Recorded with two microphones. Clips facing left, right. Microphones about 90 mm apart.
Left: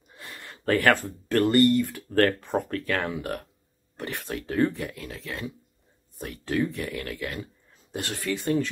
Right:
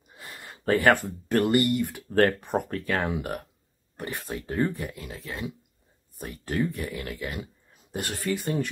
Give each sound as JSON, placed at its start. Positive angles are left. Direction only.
{"t": 0.1, "sound": "speech", "side_deg": -10}